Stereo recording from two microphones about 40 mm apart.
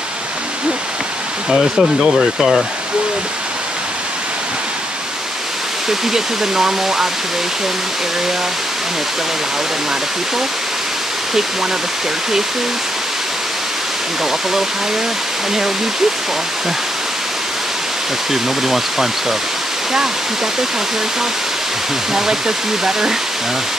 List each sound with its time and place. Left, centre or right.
1.5 s speech: centre
5.9 s speech: centre
18.3 s speech: centre
22.1 s speech: centre